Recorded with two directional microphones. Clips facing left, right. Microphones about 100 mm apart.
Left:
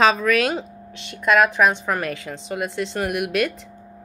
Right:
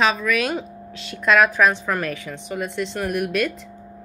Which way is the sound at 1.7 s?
20° left (ahead or behind).